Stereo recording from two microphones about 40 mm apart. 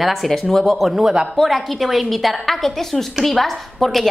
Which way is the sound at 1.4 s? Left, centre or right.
Centre.